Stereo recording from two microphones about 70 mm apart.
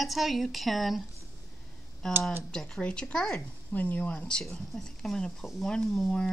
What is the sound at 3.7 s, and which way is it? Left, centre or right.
Speech, left.